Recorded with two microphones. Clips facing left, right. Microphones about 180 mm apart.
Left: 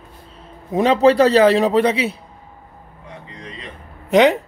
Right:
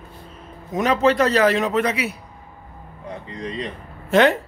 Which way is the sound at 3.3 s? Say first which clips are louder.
Right 11 dB; 35° right (ahead or behind).